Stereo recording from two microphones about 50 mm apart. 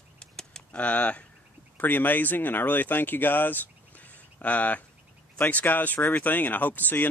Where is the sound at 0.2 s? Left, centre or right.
Centre.